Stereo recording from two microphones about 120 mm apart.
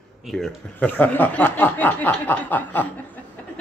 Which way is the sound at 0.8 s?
15° left (ahead or behind).